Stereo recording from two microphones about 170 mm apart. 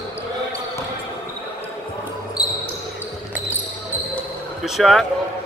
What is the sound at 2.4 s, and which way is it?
Basketball bounce, 25° left (ahead or behind).